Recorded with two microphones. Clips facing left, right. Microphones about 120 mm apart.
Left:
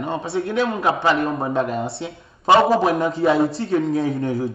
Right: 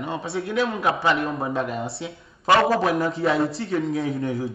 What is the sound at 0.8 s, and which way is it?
Speech, 30° left (ahead or behind).